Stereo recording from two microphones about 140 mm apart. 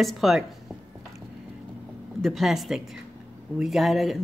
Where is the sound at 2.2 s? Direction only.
Centre (ahead or behind).